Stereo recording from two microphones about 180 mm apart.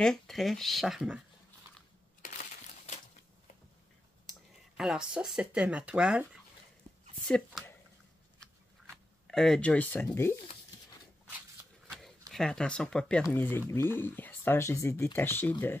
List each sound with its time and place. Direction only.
0.0 s speech: centre (ahead or behind)
2.2 s crushing: 45° left (ahead or behind)
4.3 s speech: 5° right (ahead or behind)
7.2 s speech: 5° left (ahead or behind)
8.9 s speech: centre (ahead or behind)
12.0 s speech: centre (ahead or behind)